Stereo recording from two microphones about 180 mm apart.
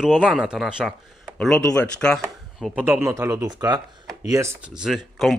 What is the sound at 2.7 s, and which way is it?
Speech, 10° right (ahead or behind).